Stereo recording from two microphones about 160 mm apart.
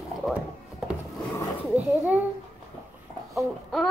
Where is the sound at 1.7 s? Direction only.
10° right (ahead or behind).